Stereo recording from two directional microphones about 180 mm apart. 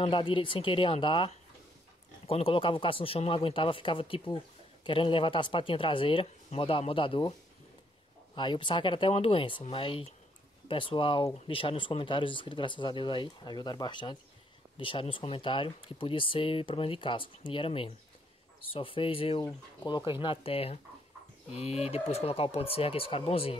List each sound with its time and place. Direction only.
0.0 s speech: 30° left (ahead or behind)
8.4 s speech: 25° left (ahead or behind)
19.4 s speech: 20° left (ahead or behind)